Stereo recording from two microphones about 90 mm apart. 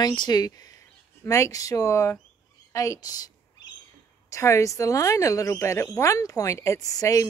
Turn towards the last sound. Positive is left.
turn(degrees=40)  # may be behind; listen again after turning